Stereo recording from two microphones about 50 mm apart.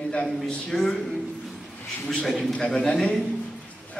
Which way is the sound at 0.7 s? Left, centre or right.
Centre.